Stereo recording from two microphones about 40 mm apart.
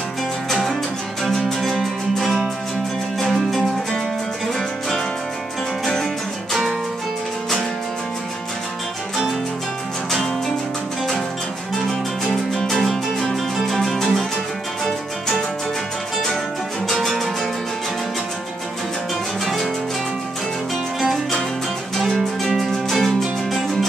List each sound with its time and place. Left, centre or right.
1.2 s music: centre
12.3 s music: centre
16.8 s music: centre
19.4 s music: centre
22.4 s music: centre